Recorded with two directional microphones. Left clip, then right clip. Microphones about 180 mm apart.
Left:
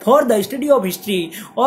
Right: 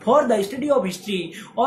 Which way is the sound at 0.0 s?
50° left (ahead or behind).